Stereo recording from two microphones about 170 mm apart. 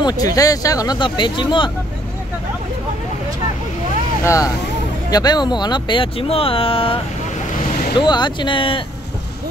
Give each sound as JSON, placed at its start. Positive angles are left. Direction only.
{"t": 0.0, "sound": "speech", "side_deg": 20}
{"t": 4.2, "sound": "speech", "side_deg": 15}
{"t": 8.0, "sound": "speech", "side_deg": 25}